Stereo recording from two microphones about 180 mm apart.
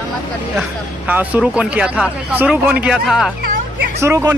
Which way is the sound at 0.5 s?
10° right (ahead or behind).